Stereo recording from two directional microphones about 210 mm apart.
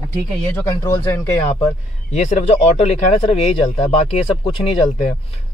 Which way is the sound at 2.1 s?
35° left (ahead or behind).